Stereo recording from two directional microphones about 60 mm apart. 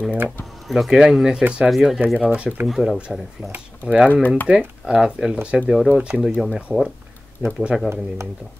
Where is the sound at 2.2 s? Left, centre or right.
Centre.